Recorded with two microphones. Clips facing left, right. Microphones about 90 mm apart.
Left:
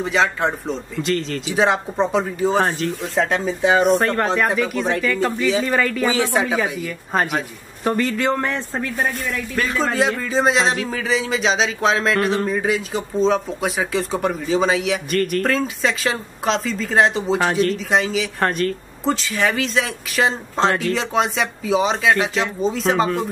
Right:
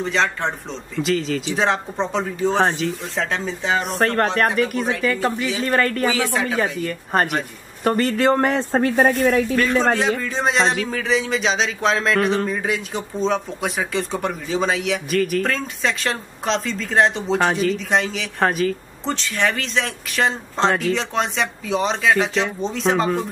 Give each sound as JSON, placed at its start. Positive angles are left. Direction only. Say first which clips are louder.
{"t": 0.0, "sound": "speech", "louder": "left 2 dB", "side_deg": 5}
{"t": 3.8, "sound": "speech", "louder": "left 3 dB", "side_deg": 0}
{"t": 5.6, "sound": "speech", "louder": "even", "side_deg": 5}
{"t": 6.0, "sound": "speech", "louder": "left 2 dB", "side_deg": 20}
{"t": 8.4, "sound": "speech", "louder": "right 5 dB", "side_deg": -30}
{"t": 9.2, "sound": "speech", "louder": "right 9 dB", "side_deg": -50}
{"t": 9.6, "sound": "speech", "louder": "right 2 dB", "side_deg": 0}